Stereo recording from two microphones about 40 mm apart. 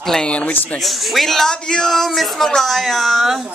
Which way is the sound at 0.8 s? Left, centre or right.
Centre.